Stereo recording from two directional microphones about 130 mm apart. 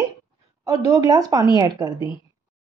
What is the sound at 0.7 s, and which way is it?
A woman's voice, 25° right (ahead or behind).